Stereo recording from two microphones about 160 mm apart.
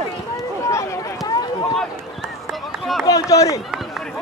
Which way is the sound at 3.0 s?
20° left (ahead or behind).